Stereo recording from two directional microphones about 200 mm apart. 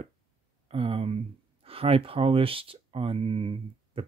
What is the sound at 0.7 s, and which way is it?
Speech, 30° right (ahead or behind).